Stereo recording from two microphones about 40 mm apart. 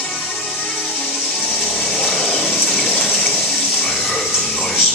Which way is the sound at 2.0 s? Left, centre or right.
Centre.